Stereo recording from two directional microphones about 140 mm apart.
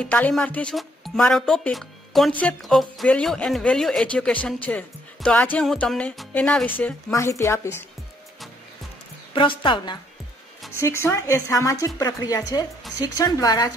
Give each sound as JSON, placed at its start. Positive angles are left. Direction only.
{"t": 0.0, "sound": "speech", "side_deg": 10}
{"t": 7.1, "sound": "a woman's voice", "side_deg": 20}
{"t": 9.3, "sound": "a woman's voice", "side_deg": 35}
{"t": 10.8, "sound": "a woman's voice", "side_deg": 20}